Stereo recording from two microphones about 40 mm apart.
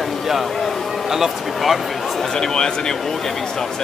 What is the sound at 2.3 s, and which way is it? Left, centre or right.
Speech, centre.